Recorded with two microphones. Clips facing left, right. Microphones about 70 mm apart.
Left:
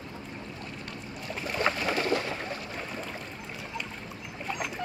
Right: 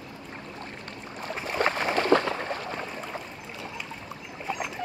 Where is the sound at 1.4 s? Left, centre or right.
Right.